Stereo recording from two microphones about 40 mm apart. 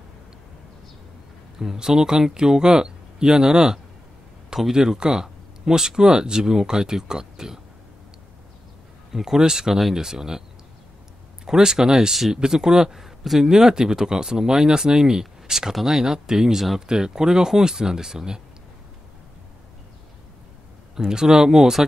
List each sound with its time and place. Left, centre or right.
1.6 s speech: centre
9.1 s speech: centre
9.8 s speech: centre
11.4 s speech: centre
13.5 s speech: centre
16.8 s speech: centre
20.9 s speech: centre